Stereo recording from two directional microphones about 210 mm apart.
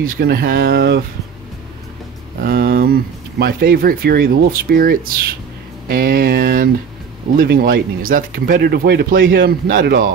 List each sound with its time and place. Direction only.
0.0 s speech: 45° right (ahead or behind)
2.4 s speech: 50° right (ahead or behind)